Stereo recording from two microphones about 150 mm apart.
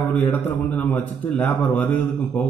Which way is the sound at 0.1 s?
10° left (ahead or behind).